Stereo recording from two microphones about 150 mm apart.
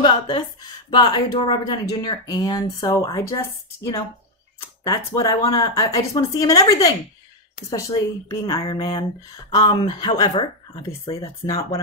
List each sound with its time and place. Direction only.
0.0 s speech: 30° left (ahead or behind)
4.6 s speech: 25° left (ahead or behind); by 11.1 s 40° left (ahead or behind)
11.4 s speech: 20° left (ahead or behind)